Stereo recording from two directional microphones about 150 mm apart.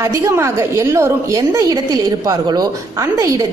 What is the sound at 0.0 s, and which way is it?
A woman's voice, 20° right (ahead or behind).